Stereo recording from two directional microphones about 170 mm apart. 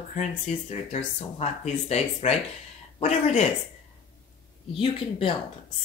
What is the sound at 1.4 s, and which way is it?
Speech, 40° left (ahead or behind).